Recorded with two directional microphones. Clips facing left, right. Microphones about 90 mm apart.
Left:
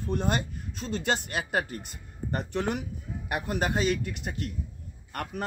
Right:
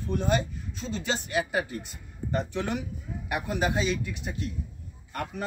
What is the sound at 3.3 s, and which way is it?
A man's voice, 50° left (ahead or behind).